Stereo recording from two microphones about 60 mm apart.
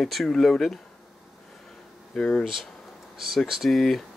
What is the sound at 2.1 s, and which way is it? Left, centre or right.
Speech, centre.